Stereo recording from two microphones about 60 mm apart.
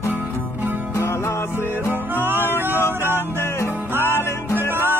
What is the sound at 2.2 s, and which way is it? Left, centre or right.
Music, right.